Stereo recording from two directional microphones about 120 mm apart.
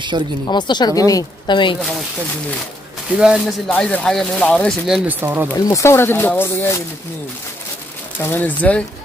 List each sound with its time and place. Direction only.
0.1 s speech: 40° right (ahead or behind)
0.5 s a woman's voice: 40° left (ahead or behind)
1.8 s speech: centre (ahead or behind)
3.2 s speech: 5° right (ahead or behind)
3.6 s speech: 10° left (ahead or behind)
5.0 s speech: 15° right (ahead or behind)
5.7 s speech: 25° left (ahead or behind)
8.2 s speech: 15° left (ahead or behind)